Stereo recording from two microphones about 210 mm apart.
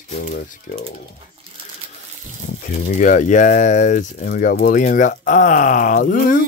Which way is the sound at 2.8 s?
40° left (ahead or behind).